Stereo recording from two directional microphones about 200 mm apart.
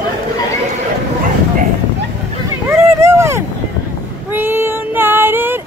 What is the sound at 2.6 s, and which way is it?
Vehicle, 10° right (ahead or behind).